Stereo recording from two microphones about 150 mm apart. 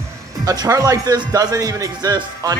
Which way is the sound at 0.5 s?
25° right (ahead or behind).